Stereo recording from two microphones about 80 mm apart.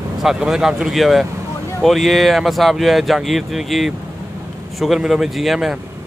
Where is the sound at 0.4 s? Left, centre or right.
Centre.